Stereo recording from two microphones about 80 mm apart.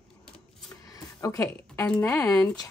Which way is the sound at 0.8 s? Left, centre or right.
Left.